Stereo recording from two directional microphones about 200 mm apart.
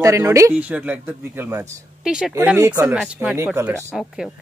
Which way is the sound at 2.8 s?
5° right (ahead or behind).